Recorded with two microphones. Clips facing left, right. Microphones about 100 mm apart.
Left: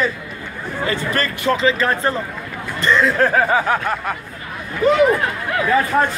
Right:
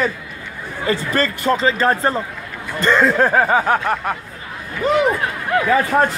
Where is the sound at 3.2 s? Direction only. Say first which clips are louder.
Right 1 dB; 25° right (ahead or behind).